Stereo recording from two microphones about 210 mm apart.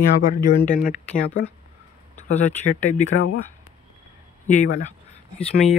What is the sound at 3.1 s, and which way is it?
Speech, 60° left (ahead or behind).